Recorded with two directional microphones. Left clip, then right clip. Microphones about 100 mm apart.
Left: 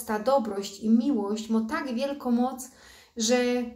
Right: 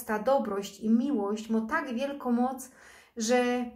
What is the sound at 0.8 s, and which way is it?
A woman's voice, 20° left (ahead or behind).